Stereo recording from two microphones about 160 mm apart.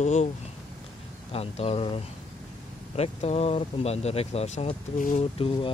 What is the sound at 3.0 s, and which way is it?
Speech, 40° left (ahead or behind).